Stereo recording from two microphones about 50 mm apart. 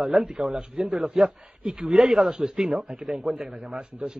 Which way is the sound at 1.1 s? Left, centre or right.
Centre.